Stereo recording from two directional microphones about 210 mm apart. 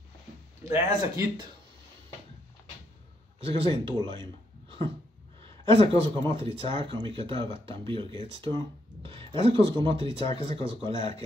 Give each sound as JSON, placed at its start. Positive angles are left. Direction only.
{"t": 0.7, "sound": "speech", "side_deg": -15}
{"t": 3.3, "sound": "speech", "side_deg": -25}
{"t": 8.5, "sound": "a sound", "side_deg": -25}
{"t": 9.8, "sound": "speech", "side_deg": -25}